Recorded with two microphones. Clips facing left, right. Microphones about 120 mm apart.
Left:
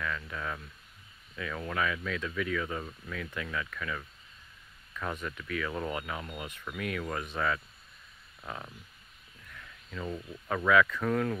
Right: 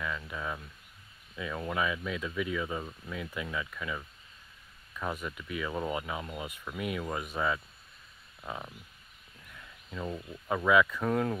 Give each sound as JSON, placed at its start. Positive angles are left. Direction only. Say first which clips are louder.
{"t": 0.0, "sound": "speech", "louder": "even", "side_deg": -15}